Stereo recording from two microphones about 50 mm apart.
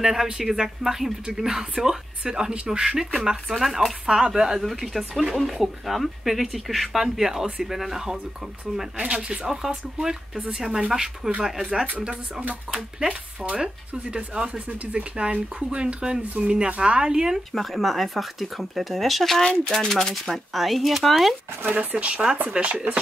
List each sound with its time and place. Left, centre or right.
0.0 s speech: centre
8.9 s speech: right
10.5 s speech: centre
11.7 s speech: right
13.5 s speech: right
17.5 s speech: centre
21.6 s speech: right